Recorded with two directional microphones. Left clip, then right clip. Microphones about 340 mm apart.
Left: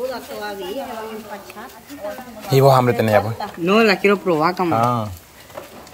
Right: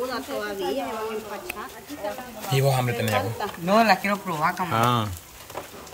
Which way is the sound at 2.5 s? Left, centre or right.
Centre.